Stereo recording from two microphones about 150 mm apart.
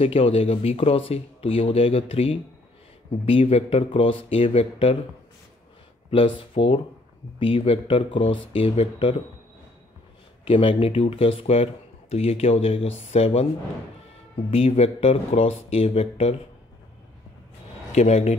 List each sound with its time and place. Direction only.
0.0 s speech: 40° left (ahead or behind)
6.0 s speech: 35° left (ahead or behind)
10.4 s speech: 35° left (ahead or behind)
14.5 s speech: 45° left (ahead or behind)
17.9 s speech: 45° left (ahead or behind)